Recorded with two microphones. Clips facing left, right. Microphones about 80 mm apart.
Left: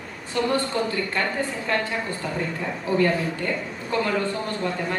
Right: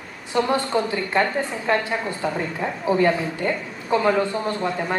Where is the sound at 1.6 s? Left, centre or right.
Right.